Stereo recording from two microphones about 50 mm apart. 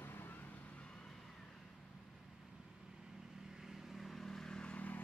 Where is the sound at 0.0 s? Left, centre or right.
Left.